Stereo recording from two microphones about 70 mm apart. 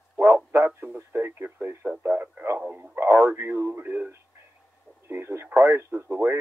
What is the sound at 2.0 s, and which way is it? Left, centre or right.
Speech, right.